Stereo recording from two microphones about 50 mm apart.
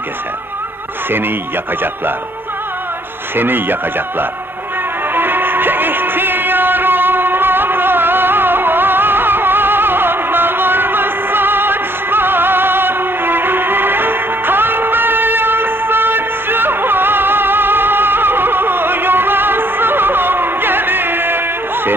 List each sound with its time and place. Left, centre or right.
3.3 s a man's voice: right
5.1 s music: right